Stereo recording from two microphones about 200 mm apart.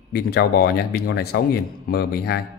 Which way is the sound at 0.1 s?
50° left (ahead or behind).